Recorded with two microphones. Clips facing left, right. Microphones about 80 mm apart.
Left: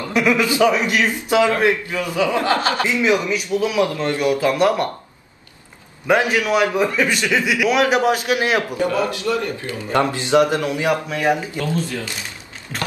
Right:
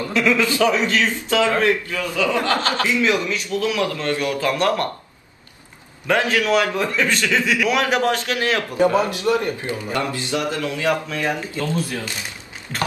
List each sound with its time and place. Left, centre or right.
0.1 s a man's voice: centre
6.0 s a man's voice: centre
8.7 s a man's voice: right
9.9 s a man's voice: left
12.7 s speech: centre